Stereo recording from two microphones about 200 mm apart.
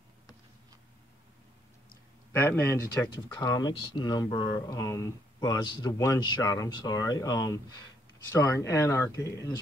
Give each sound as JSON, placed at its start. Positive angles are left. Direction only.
{"t": 2.3, "sound": "speech", "side_deg": 10}